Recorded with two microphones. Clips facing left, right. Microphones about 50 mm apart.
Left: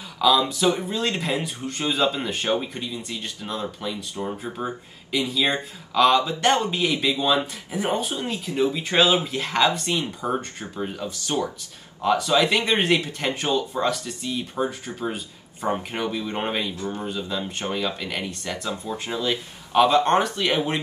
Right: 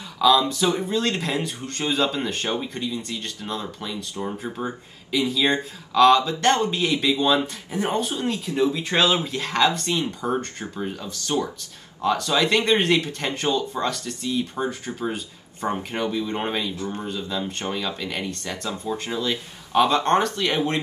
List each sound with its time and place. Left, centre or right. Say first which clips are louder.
0.2 s speech: right 1 dB; centre
2.4 s speech: left 2 dB; left
2.9 s speech: right 2 dB; centre
4.3 s speech: even; centre
9.1 s speech: left 1 dB; left
9.4 s speech: even; centre
10.2 s speech: right 1 dB; centre
11.1 s speech: right 2 dB; left; by 14.8 s centre
15.1 s speech: right 1 dB; centre
17.7 s speech: left 1 dB; centre
18.3 s speech: left 1 dB; left
19.7 s speech: left 1 dB; centre
20.1 s speech: even; centre